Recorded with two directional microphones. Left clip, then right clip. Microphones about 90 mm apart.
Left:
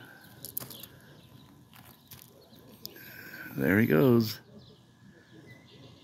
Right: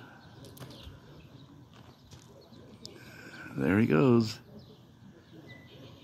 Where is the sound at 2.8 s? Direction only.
20° left (ahead or behind).